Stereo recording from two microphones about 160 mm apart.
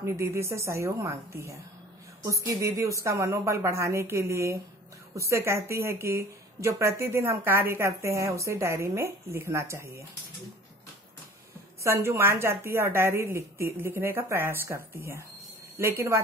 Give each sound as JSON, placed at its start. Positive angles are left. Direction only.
{"t": 0.0, "sound": "a woman's voice", "side_deg": -15}
{"t": 11.8, "sound": "a woman's voice", "side_deg": -15}